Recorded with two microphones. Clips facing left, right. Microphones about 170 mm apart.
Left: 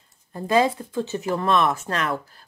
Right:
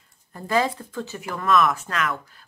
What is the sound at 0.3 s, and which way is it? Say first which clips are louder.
Speech: left 3 dB; 20° left (ahead or behind).